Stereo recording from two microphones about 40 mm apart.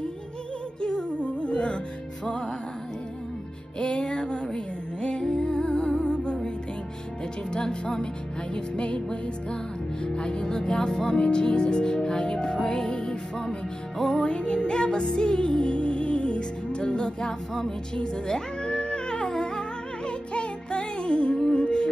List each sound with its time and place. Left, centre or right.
0.7 s music: left
3.8 s music: left
7.5 s music: centre